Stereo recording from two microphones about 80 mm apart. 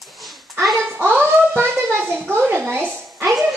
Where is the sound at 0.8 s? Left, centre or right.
Right.